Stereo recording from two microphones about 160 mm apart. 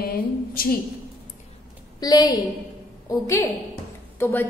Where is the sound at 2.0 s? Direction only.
25° left (ahead or behind).